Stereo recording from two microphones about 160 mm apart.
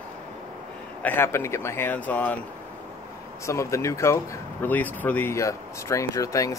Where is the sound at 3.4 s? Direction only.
20° left (ahead or behind).